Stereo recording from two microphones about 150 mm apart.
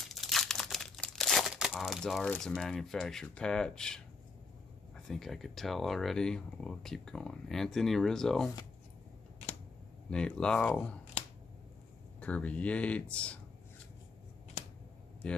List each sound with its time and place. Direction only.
0.1 s crumpling: centre (ahead or behind)
2.5 s speech: centre (ahead or behind)
10.0 s speech: 5° left (ahead or behind)
12.2 s speech: 10° left (ahead or behind)